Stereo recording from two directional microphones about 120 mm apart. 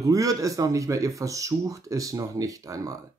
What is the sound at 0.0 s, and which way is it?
Speech, 30° right (ahead or behind).